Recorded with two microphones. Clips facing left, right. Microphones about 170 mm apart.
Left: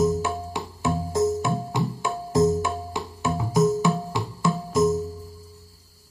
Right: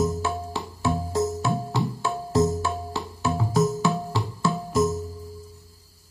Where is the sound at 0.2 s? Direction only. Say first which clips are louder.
Even; 15° left (ahead or behind).